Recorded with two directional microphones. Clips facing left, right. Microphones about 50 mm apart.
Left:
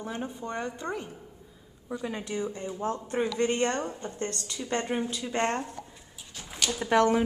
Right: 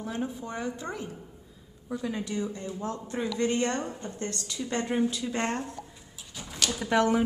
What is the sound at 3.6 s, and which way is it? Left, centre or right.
A woman's voice, centre.